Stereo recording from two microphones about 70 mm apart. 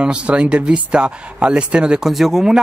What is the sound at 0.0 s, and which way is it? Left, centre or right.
Speech, centre.